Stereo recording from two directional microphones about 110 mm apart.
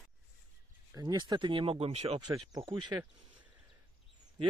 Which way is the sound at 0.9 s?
40° right (ahead or behind).